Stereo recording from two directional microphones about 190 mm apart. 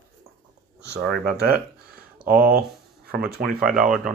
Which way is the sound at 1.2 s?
55° right (ahead or behind).